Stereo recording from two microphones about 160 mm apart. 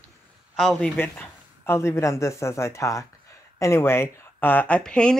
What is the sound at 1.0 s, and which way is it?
Speech, 15° left (ahead or behind).